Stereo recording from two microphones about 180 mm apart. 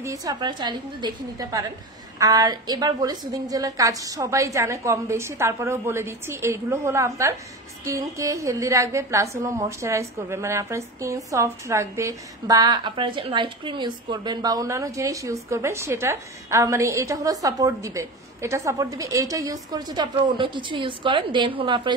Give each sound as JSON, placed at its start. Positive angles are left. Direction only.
{"t": 0.0, "sound": "a woman's voice", "side_deg": -20}